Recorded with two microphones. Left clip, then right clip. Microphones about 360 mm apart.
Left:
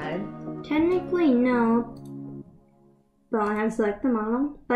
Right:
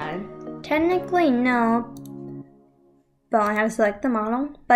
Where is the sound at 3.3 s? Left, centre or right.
Centre.